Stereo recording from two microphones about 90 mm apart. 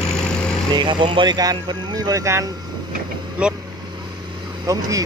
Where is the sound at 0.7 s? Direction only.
65° right (ahead or behind); by 2.4 s 35° right (ahead or behind).